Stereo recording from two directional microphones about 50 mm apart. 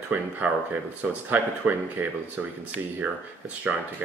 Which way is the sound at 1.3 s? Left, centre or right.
Right.